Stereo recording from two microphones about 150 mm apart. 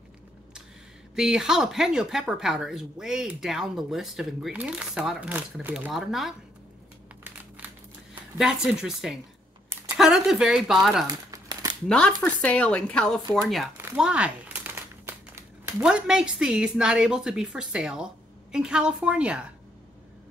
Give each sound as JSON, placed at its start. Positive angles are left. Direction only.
{"t": 1.1, "sound": "speech", "side_deg": -5}
{"t": 5.9, "sound": "speech", "side_deg": 0}
{"t": 8.4, "sound": "speech", "side_deg": -5}
{"t": 11.1, "sound": "crumpling", "side_deg": -25}
{"t": 12.2, "sound": "speech", "side_deg": 10}
{"t": 13.7, "sound": "crumpling", "side_deg": -10}
{"t": 15.6, "sound": "speech", "side_deg": -5}